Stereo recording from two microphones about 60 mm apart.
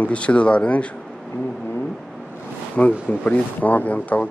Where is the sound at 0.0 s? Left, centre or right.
Centre.